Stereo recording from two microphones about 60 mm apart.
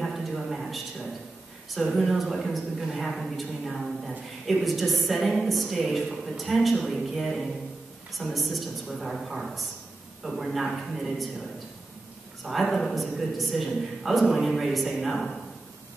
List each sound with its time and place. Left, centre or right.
0.0 s a sound: centre
1.8 s a woman's voice: centre
12.4 s a woman's voice: centre